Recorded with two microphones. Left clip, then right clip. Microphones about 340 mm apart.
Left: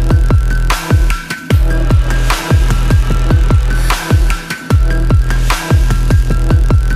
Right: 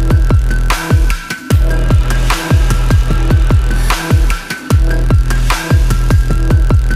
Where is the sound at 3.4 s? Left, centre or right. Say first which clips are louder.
Even; centre.